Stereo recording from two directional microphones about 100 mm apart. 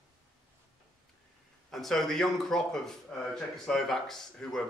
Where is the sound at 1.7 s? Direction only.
5° left (ahead or behind).